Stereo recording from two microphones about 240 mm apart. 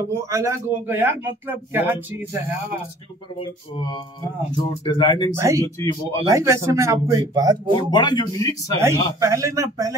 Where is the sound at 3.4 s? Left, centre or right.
Centre.